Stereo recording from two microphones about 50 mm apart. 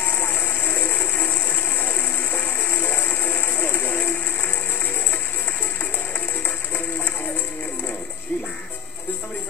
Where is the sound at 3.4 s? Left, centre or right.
Left.